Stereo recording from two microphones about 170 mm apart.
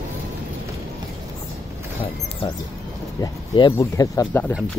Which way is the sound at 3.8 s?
20° left (ahead or behind).